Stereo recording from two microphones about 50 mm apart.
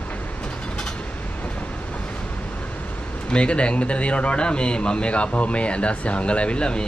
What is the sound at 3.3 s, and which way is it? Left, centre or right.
Speech, left.